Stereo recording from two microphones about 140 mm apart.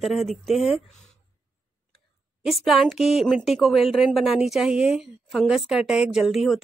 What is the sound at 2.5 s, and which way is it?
Speech, centre (ahead or behind).